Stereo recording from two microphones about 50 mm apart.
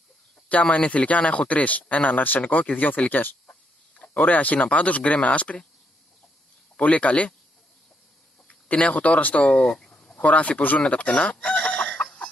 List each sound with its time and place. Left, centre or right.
0.5 s speech: left
4.0 s speech: left
6.8 s speech: left
8.5 s speech: left
11.9 s chicken: left